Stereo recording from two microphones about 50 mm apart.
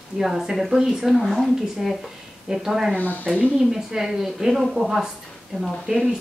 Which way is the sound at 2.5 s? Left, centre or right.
Centre.